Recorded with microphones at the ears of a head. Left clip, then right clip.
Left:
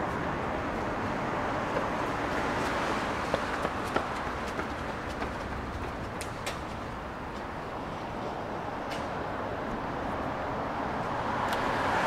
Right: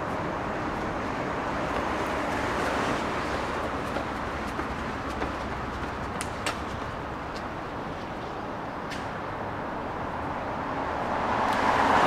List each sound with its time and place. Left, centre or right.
11.4 s vehicle: right